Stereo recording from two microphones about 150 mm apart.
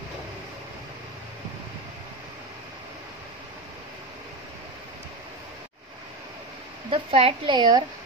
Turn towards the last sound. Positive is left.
turn(degrees=-30)  # may be behind; listen again after turning